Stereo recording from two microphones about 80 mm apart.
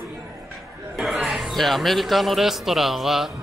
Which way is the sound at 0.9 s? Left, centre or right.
Centre.